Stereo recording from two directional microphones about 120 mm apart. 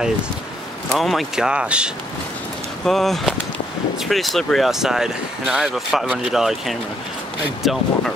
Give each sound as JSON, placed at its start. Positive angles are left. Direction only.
{"t": 0.9, "sound": "speech", "side_deg": 0}
{"t": 2.8, "sound": "speech", "side_deg": 0}